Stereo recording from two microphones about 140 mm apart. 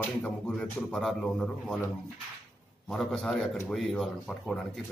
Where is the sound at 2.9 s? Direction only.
5° left (ahead or behind).